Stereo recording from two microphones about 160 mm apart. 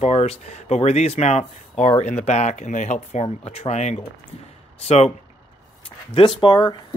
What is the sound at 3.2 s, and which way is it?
Speech, 35° left (ahead or behind).